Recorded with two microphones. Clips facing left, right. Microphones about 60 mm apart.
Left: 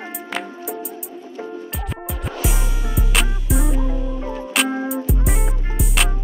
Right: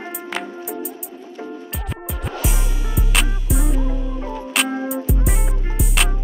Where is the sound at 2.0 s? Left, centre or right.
Centre.